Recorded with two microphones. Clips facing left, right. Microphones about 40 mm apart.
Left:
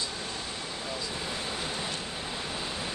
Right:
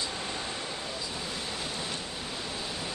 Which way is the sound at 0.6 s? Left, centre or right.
Centre.